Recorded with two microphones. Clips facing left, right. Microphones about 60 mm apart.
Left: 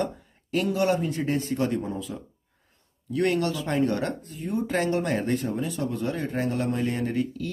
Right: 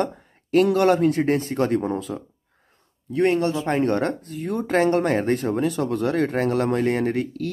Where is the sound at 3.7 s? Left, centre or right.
Right.